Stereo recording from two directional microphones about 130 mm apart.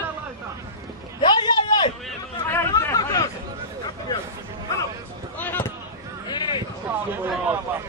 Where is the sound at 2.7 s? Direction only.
25° left (ahead or behind).